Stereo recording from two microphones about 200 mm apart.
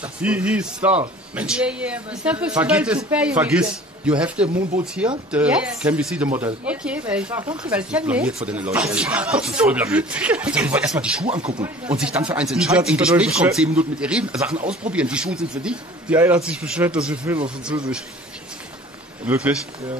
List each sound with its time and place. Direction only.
0.0 s speech: 5° right (ahead or behind)
11.2 s speech: 25° right (ahead or behind)
11.9 s speech: 5° right (ahead or behind)
14.5 s speech: 35° right (ahead or behind)
14.9 s speech: 5° right (ahead or behind)
19.2 s speech: 5° right (ahead or behind)